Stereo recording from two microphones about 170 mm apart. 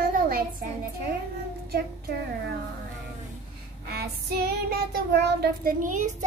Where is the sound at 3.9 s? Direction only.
70° right (ahead or behind).